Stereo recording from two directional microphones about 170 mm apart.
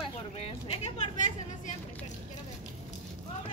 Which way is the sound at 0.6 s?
35° left (ahead or behind).